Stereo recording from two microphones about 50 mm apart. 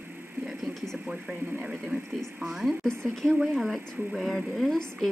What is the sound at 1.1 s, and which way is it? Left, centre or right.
Speech, centre.